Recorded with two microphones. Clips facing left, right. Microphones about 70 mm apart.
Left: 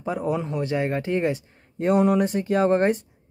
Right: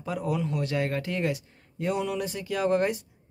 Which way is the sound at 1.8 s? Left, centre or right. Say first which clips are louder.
Left 9 dB; left.